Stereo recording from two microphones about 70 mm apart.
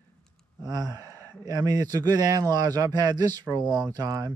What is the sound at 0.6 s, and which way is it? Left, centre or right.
Speech, right.